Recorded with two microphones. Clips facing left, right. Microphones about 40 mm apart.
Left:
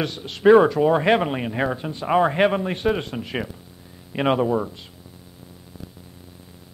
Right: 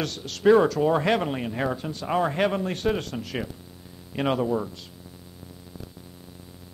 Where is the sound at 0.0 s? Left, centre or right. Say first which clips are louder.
Left 4 dB; left.